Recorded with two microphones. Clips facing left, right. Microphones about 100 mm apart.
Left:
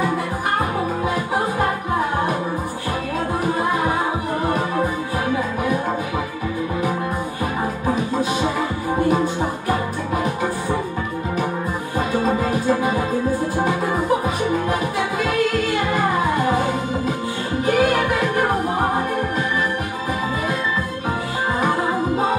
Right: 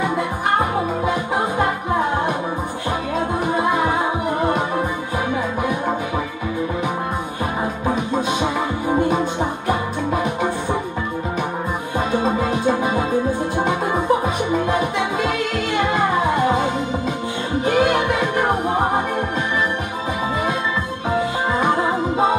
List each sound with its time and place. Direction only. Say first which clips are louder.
9.1 s music: even; 20° right (ahead or behind)
12.1 s music: even; 20° right (ahead or behind)